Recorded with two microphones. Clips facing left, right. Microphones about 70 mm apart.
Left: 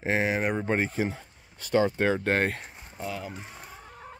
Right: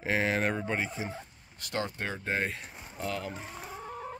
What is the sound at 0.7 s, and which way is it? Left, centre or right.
Speech, left.